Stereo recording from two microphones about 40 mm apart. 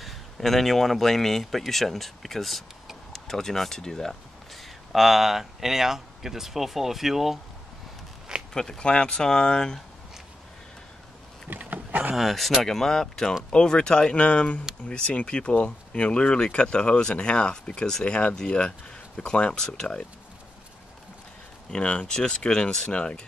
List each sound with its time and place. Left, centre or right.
0.0 s speech: centre
8.5 s speech: centre
8.8 s speech: left
11.5 s a sound: right
12.2 s speech: centre
12.6 s speech: centre
21.6 s speech: left